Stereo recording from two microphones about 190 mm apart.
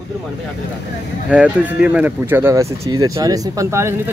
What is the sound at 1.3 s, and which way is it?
Speech, 5° right (ahead or behind).